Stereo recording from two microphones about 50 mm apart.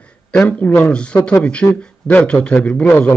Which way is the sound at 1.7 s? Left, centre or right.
Left.